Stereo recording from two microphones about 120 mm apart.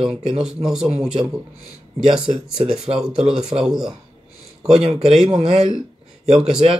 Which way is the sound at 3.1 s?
60° right (ahead or behind).